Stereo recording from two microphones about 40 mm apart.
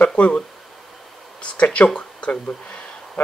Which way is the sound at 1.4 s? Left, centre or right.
Left.